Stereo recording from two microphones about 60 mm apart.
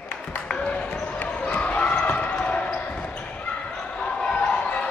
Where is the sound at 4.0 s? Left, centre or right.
Centre.